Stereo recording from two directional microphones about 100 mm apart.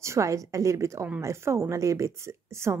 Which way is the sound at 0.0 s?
30° right (ahead or behind).